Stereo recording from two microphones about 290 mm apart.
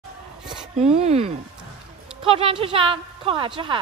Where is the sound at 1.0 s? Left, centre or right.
Right.